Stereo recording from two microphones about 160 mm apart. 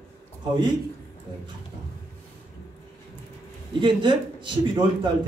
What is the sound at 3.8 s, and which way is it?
Speech, 30° right (ahead or behind).